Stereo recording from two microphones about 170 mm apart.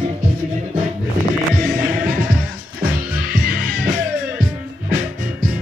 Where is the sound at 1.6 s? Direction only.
60° right (ahead or behind).